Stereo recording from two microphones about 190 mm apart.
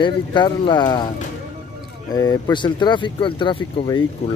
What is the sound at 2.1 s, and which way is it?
Speech, 20° left (ahead or behind).